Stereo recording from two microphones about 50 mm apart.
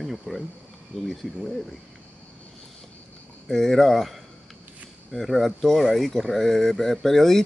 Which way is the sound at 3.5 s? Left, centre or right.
Centre.